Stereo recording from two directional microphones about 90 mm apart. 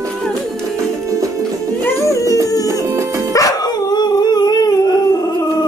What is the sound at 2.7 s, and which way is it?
Music, 35° right (ahead or behind).